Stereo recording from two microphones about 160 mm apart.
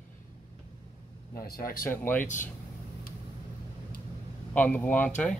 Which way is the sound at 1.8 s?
15° left (ahead or behind).